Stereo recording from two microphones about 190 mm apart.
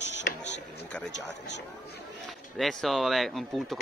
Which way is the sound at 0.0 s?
70° left (ahead or behind).